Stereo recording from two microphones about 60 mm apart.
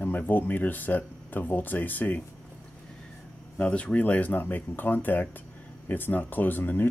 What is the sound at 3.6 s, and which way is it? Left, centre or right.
Speech, left.